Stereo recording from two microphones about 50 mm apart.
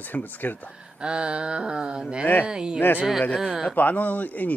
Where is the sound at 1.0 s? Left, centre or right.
Right.